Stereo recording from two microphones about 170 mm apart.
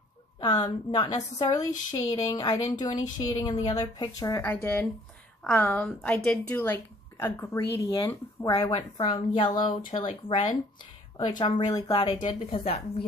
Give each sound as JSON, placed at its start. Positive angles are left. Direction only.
{"t": 0.4, "sound": "a woman's voice", "side_deg": 25}
{"t": 4.4, "sound": "a woman's voice", "side_deg": 10}
{"t": 8.7, "sound": "a woman's voice", "side_deg": 30}